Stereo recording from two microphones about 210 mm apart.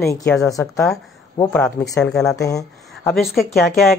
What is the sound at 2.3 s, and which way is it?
Speech, 15° left (ahead or behind).